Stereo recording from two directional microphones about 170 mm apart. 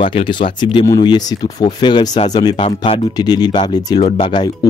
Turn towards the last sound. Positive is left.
turn(degrees=25)  # may be behind; listen again after turning